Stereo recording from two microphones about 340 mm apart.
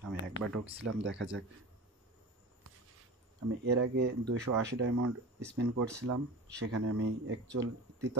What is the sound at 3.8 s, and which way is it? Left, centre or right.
Speech, right.